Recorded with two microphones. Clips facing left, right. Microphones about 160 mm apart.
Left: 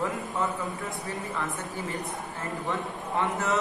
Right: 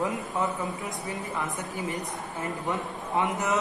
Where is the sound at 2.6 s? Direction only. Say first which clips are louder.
Right 1 dB; 15° right (ahead or behind).